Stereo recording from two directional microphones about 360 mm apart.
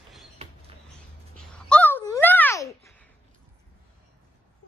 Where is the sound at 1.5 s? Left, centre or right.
Centre.